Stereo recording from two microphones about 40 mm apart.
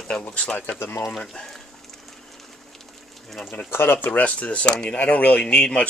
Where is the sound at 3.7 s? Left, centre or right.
Left.